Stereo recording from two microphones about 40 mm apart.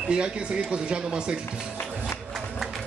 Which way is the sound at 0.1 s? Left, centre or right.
Right.